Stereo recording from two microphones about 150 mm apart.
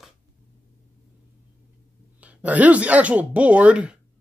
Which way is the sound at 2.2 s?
10° right (ahead or behind).